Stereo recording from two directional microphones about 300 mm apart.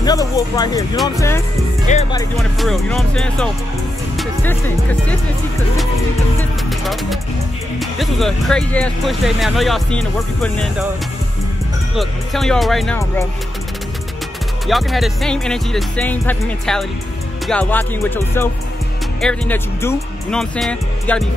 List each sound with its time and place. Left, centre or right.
0.0 s speech: centre
2.3 s speech: centre
4.2 s music: centre
6.8 s speech: centre
11.9 s speech: centre
14.7 s speech: centre